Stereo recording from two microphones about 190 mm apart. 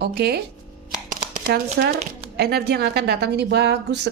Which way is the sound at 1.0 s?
55° right (ahead or behind).